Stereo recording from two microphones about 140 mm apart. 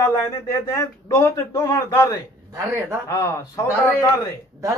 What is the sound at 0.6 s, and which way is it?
A man's voice, 20° left (ahead or behind).